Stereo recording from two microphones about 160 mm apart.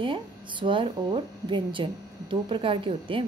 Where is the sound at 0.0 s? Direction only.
30° right (ahead or behind).